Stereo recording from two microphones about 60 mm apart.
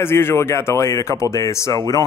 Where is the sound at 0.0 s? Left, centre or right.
Left.